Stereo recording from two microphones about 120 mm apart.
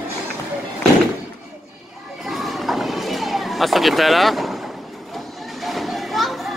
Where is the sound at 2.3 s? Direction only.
Centre (ahead or behind).